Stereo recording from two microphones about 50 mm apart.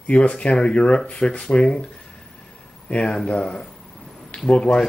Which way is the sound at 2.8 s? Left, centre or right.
Left.